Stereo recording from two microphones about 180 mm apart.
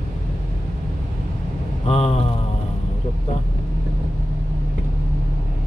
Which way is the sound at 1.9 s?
35° left (ahead or behind).